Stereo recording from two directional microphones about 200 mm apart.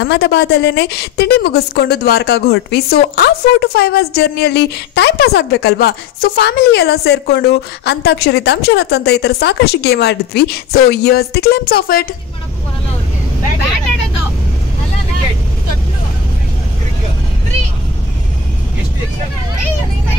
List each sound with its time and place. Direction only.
0.0 s a woman's voice: 60° left (ahead or behind)